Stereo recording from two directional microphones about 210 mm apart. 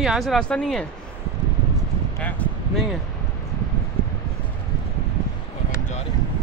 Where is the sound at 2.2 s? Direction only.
5° left (ahead or behind).